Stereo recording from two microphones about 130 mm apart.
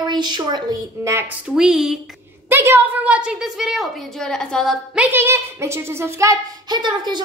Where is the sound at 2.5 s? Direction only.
20° right (ahead or behind); by 4.8 s 5° left (ahead or behind).